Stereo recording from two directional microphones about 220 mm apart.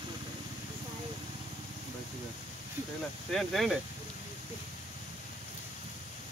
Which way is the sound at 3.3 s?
Centre (ahead or behind).